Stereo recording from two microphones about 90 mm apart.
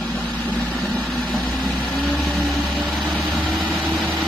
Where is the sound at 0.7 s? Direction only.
15° left (ahead or behind).